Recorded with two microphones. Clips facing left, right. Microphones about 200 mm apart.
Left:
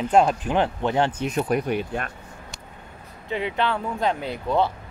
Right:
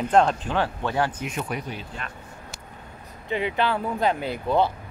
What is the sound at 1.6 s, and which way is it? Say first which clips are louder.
Speech: left 9 dB; 60° left (ahead or behind).